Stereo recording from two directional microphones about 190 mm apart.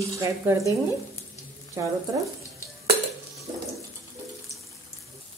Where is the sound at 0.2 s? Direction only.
15° right (ahead or behind).